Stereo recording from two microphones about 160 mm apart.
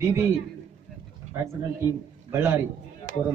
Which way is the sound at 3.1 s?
60° right (ahead or behind).